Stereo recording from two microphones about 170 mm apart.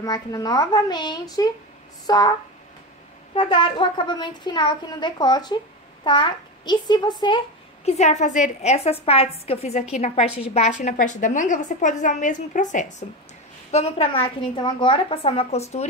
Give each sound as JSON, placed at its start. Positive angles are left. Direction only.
{"t": 0.0, "sound": "a woman's voice", "side_deg": 20}
{"t": 3.3, "sound": "a woman's voice", "side_deg": 30}
{"t": 8.0, "sound": "a woman's voice", "side_deg": 45}
{"t": 13.7, "sound": "a woman's voice", "side_deg": 35}